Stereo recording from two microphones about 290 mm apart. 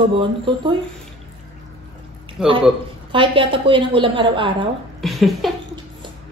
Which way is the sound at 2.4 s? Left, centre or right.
Centre.